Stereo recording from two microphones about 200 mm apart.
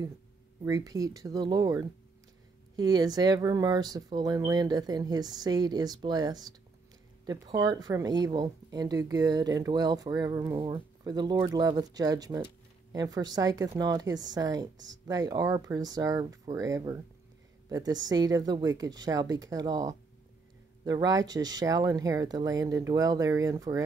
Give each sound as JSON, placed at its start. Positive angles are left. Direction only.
{"t": 0.7, "sound": "a woman's voice", "side_deg": -20}